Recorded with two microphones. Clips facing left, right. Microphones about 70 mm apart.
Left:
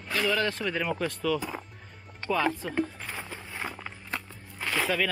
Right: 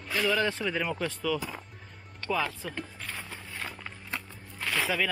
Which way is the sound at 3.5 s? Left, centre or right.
Centre.